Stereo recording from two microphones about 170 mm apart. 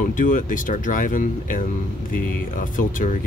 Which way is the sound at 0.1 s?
50° left (ahead or behind).